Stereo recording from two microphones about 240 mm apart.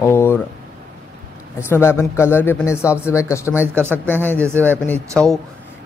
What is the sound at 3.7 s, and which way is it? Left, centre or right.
Speech, centre.